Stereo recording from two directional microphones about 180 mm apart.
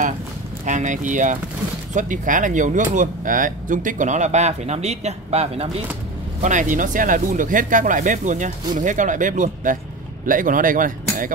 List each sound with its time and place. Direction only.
0.7 s speech: 45° right (ahead or behind)